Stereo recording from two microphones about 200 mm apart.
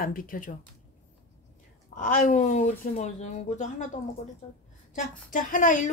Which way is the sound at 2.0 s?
40° left (ahead or behind).